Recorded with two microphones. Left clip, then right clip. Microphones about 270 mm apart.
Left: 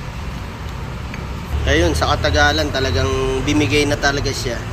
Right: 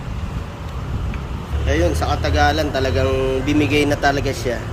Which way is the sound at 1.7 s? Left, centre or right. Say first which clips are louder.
Left 3 dB; centre.